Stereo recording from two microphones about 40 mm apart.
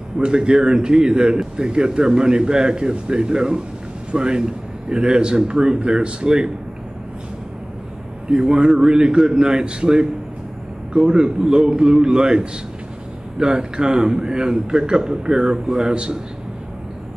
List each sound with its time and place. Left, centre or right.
0.2 s a man's voice: right
8.3 s a man's voice: right